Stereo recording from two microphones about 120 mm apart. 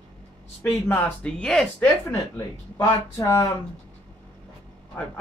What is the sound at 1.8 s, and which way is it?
Speech, 25° left (ahead or behind).